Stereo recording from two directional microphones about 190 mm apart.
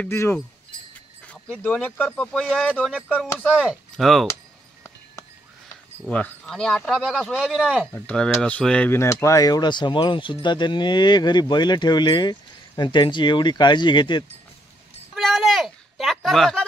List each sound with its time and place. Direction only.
0.0 s speech: 10° left (ahead or behind)
6.0 s speech: 5° left (ahead or behind)
7.9 s speech: 10° left (ahead or behind); by 14.2 s 25° left (ahead or behind)
15.1 s a sound: centre (ahead or behind)